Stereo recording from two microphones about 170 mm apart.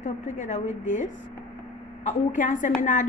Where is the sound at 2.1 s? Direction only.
50° left (ahead or behind).